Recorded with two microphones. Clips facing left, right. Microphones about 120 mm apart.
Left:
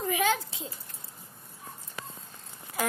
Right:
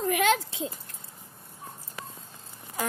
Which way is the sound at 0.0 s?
90° right.